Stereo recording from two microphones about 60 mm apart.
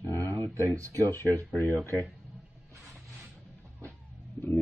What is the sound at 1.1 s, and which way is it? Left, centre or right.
Speech, left.